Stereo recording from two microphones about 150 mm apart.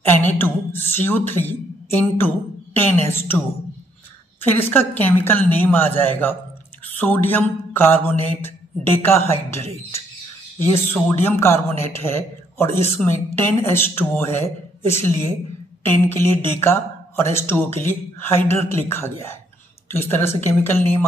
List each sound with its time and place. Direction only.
0.1 s mantra: 15° left (ahead or behind)